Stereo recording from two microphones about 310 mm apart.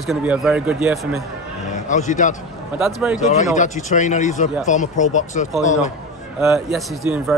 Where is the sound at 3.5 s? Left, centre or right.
Left.